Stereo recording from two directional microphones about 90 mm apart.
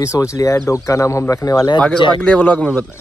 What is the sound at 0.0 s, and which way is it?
Speech, 35° left (ahead or behind).